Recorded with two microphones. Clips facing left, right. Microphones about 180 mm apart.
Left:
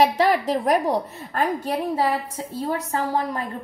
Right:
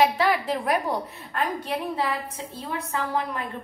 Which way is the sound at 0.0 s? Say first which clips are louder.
Left 3 dB; 40° left (ahead or behind).